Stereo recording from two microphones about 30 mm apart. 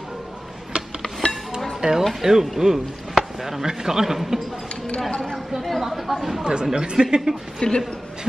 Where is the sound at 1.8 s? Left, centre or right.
Right.